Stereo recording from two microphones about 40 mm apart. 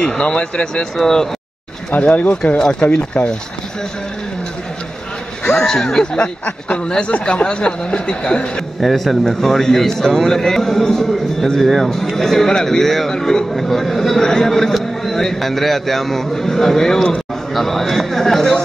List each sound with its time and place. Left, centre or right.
0.0 s speech: left
0.9 s a man's voice: centre
2.1 s speech: left
5.4 s a man's voice: centre
6.1 s speech: left
8.8 s a man's voice: centre